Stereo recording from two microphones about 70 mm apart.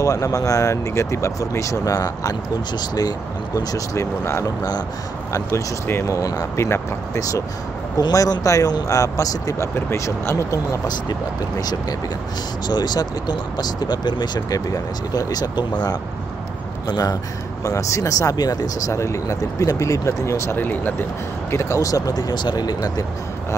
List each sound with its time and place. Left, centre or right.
0.0 s speech: left
6.1 s speech: left
6.6 s speech: left
9.8 s speech: left
12.6 s speech: left
16.8 s speech: left
17.6 s speech: left
18.9 s speech: left
20.5 s speech: left
21.5 s speech: left